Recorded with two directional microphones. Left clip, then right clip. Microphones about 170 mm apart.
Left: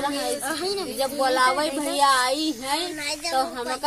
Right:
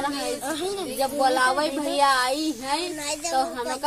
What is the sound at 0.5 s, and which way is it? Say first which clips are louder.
Speech: left 1 dB; 45° right (ahead or behind).